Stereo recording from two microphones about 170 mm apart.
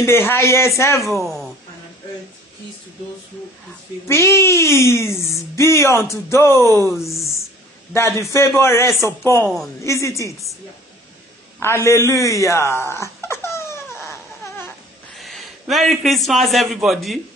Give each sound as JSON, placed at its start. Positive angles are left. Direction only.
{"t": 0.0, "sound": "speech", "side_deg": 15}
{"t": 1.2, "sound": "a woman's voice", "side_deg": 0}
{"t": 4.1, "sound": "speech", "side_deg": 15}
{"t": 11.6, "sound": "a sound", "side_deg": 15}
{"t": 15.1, "sound": "a man's voice", "side_deg": 0}